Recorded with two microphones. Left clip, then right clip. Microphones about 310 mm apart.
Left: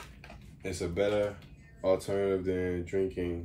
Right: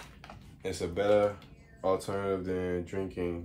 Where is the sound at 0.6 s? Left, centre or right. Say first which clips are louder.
Left 1 dB; centre.